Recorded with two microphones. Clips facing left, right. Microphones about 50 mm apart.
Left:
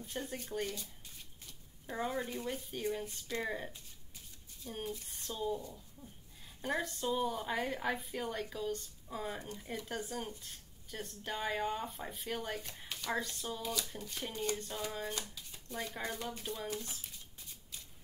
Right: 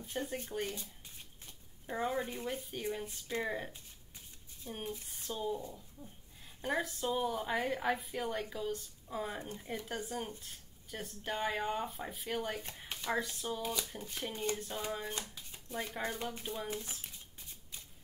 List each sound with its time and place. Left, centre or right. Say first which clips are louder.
0.0 s speech: right 3 dB; centre
1.9 s a woman's voice: right 2 dB; centre
6.6 s a woman's voice: right 1 dB; centre
12.8 s a sound: right 1 dB; right
13.1 s speech: right 2 dB; centre
15.0 s shuffling cards: even; centre
15.7 s speech: right 2 dB; centre
17.4 s shuffling cards: even; right